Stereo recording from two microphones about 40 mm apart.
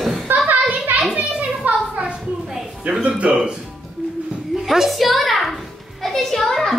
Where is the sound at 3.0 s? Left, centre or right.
Right.